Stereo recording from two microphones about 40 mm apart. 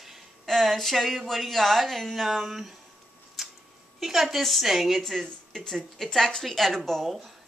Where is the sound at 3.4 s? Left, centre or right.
Centre.